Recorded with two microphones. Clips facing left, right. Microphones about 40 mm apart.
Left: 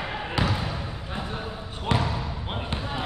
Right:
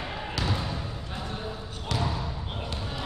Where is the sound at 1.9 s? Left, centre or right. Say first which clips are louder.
Left 5 dB; left.